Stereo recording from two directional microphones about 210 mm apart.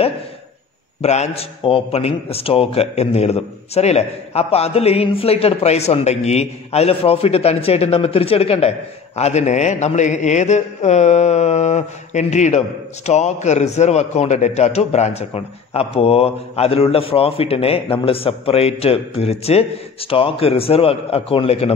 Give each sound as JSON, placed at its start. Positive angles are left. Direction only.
{"t": 1.0, "sound": "a man's voice", "side_deg": 30}